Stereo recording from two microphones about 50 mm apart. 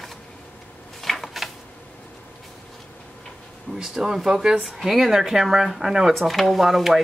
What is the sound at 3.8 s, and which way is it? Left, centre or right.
Speech, centre.